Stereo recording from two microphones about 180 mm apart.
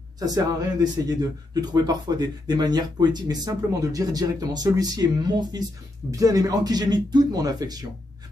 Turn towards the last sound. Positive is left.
turn(degrees=-20)  # may be behind; listen again after turning